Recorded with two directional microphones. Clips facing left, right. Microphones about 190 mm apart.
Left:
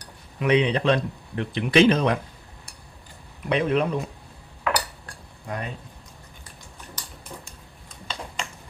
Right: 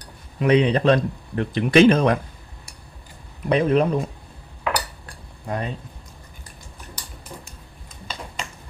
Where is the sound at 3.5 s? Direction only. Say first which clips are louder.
Right 4 dB; 40° right (ahead or behind).